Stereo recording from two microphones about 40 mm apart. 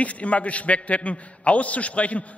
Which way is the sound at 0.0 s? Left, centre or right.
Left.